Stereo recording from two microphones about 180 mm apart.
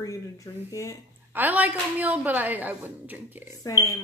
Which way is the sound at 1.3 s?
10° right (ahead or behind).